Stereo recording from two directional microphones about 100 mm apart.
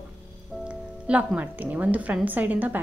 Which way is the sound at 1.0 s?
15° right (ahead or behind).